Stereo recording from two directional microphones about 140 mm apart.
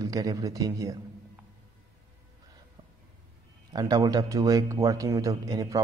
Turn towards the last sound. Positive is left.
turn(degrees=-25)  # may be behind; listen again after turning